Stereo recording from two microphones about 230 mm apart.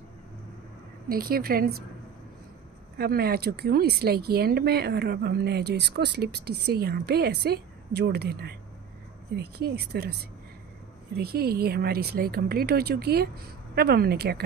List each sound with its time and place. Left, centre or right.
1.0 s a woman's voice: right
3.0 s speech: right
11.1 s speech: right